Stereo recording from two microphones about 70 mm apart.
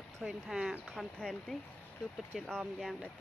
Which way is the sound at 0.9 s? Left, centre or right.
Centre.